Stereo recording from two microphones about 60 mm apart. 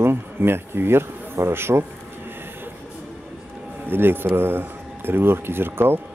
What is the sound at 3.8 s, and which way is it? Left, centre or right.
Speech, right.